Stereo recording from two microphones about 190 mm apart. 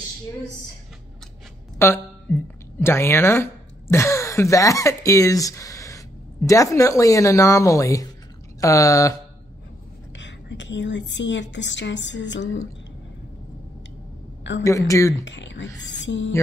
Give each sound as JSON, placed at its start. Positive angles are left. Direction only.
{"t": 1.8, "sound": "a woman's voice", "side_deg": 10}
{"t": 10.1, "sound": "a woman's voice", "side_deg": 70}
{"t": 14.6, "sound": "a woman's voice", "side_deg": 15}
{"t": 15.2, "sound": "a woman's voice", "side_deg": 70}